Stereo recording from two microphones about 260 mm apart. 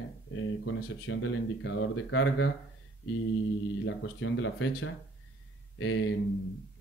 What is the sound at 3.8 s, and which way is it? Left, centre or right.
Speech, left.